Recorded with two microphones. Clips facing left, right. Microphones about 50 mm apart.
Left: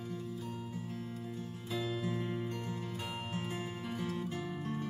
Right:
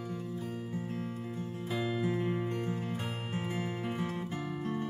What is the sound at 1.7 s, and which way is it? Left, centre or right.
Music, right.